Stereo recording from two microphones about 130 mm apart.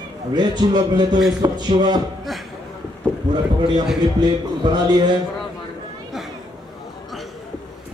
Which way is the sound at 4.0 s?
35° right (ahead or behind).